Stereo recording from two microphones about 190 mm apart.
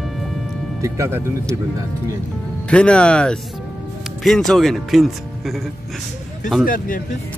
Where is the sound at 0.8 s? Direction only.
15° right (ahead or behind).